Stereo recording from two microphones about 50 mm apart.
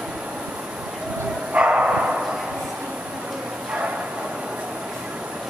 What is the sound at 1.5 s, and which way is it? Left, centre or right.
Bow-wow, right.